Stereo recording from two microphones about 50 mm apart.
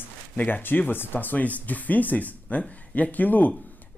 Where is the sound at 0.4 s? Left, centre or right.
Left.